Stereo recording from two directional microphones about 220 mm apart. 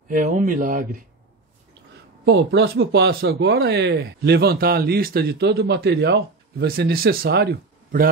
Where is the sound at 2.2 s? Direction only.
60° right (ahead or behind).